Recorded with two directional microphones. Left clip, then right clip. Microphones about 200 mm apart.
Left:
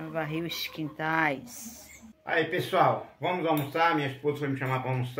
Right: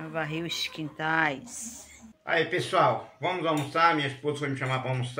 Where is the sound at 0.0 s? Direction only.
10° left (ahead or behind).